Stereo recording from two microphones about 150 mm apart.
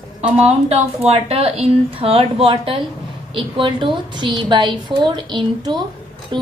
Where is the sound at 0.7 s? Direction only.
45° right (ahead or behind).